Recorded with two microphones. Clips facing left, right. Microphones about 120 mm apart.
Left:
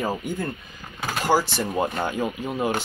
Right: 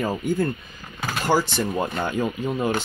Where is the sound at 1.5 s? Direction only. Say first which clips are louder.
Even; 15° left (ahead or behind).